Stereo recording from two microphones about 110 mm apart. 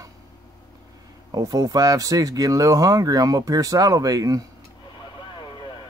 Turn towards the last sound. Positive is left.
turn(degrees=-35)  # may be behind; listen again after turning